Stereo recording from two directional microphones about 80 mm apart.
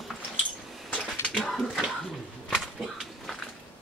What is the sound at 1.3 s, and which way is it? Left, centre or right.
Dog, centre.